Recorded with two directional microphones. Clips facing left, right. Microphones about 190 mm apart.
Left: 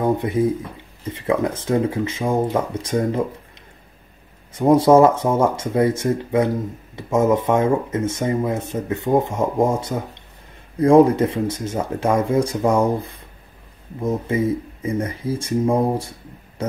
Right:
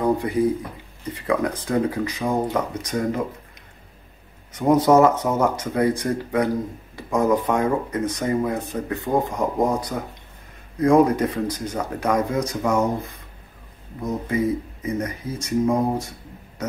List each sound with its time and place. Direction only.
0.0 s speech: 25° left (ahead or behind)
4.6 s speech: 30° left (ahead or behind)